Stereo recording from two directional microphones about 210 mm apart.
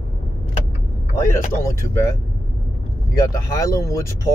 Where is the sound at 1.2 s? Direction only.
15° left (ahead or behind).